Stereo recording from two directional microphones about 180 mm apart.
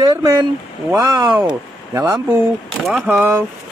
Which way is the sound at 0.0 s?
25° right (ahead or behind).